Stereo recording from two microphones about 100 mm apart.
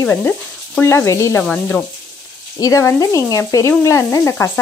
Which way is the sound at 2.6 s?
30° left (ahead or behind).